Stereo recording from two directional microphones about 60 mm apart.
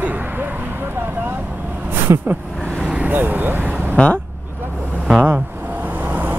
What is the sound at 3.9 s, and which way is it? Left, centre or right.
Speech, left.